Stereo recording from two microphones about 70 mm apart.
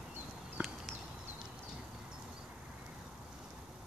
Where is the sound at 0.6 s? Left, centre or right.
Centre.